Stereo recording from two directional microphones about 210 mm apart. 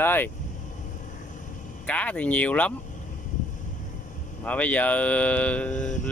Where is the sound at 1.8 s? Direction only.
5° left (ahead or behind).